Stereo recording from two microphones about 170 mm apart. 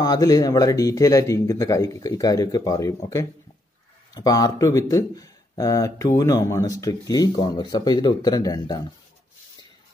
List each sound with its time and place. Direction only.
0.0 s speech: 20° left (ahead or behind)
4.1 s speech: 20° left (ahead or behind)